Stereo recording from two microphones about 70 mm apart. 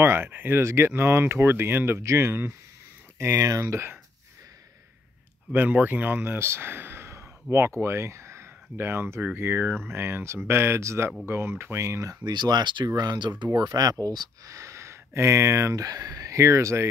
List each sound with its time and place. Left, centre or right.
0.0 s speech: right
5.5 s speech: right
12.3 s speech: right
13.6 s speech: right
14.5 s speech: right